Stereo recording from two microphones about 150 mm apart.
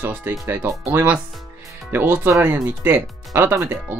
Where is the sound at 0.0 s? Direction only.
10° right (ahead or behind).